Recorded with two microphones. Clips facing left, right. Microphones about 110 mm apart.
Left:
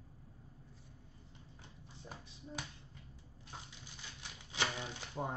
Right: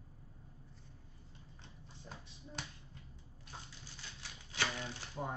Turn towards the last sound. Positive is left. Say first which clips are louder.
# left 1 dB
turn(degrees=20)  # may be behind; listen again after turning